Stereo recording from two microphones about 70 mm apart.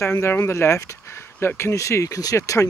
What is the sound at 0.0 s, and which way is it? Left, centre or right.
Speech, left.